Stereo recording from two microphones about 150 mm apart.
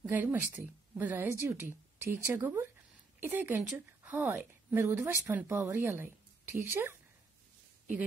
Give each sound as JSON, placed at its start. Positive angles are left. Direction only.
{"t": 0.0, "sound": "a woman's voice", "side_deg": -10}